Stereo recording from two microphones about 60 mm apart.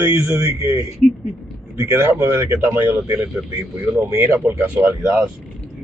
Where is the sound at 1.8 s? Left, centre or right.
Right.